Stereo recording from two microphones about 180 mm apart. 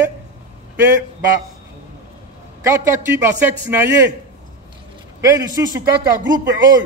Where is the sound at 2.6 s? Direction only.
15° right (ahead or behind).